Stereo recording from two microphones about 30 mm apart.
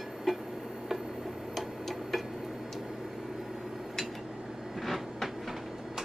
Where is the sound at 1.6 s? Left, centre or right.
Centre.